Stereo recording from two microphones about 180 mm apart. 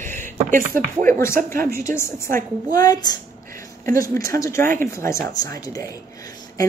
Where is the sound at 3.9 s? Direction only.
50° right (ahead or behind).